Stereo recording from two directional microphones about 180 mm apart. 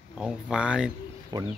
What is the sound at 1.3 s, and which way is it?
Speech, 20° right (ahead or behind).